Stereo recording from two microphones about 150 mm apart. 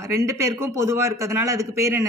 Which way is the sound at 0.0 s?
20° right (ahead or behind).